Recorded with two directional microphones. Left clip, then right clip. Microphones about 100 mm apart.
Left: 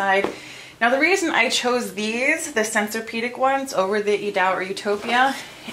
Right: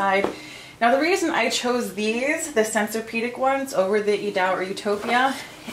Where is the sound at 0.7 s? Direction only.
20° left (ahead or behind).